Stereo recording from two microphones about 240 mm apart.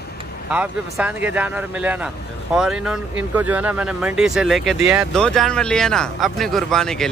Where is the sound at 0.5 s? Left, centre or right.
Centre.